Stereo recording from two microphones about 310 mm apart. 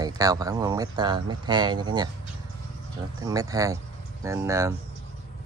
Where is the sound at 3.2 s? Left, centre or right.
Centre.